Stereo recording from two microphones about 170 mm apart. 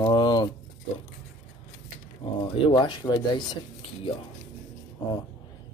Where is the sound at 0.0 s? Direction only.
25° left (ahead or behind).